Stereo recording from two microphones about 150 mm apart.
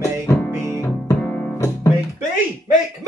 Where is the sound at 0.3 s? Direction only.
20° left (ahead or behind).